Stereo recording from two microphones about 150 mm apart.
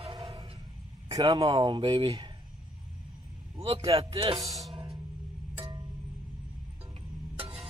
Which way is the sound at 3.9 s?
40° right (ahead or behind).